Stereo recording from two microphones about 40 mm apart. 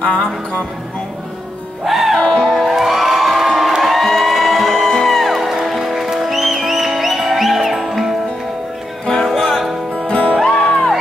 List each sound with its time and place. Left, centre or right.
0.0 s music: left
1.9 s music: centre
2.1 s music: centre
2.7 s music: centre
9.0 s music: centre
10.0 s music: left
10.5 s music: centre